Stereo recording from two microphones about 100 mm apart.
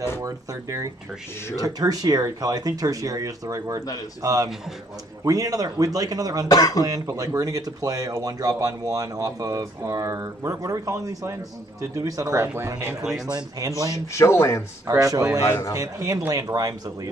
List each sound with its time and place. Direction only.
0.2 s speech: 30° right (ahead or behind)
6.5 s speech: 40° left (ahead or behind)
6.8 s speech: 35° right (ahead or behind)
13.8 s speech: 30° left (ahead or behind)
14.9 s speech: 35° right (ahead or behind)